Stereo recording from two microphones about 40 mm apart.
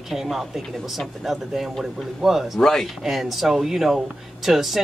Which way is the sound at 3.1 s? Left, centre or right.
Centre.